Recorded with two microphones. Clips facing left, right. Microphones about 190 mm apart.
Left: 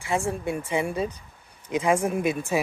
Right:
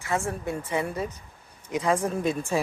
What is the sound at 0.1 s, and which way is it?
Speech, 15° left (ahead or behind).